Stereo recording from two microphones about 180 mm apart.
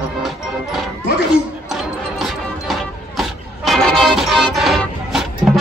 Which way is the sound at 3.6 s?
Centre (ahead or behind).